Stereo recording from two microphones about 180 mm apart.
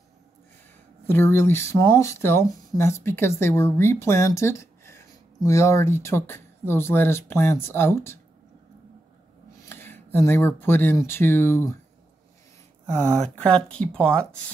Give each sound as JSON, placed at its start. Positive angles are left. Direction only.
{"t": 1.0, "sound": "speech", "side_deg": 10}
{"t": 9.7, "sound": "speech", "side_deg": 10}
{"t": 13.1, "sound": "speech", "side_deg": 5}